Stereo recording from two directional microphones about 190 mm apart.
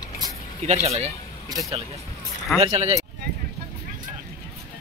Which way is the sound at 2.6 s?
30° right (ahead or behind).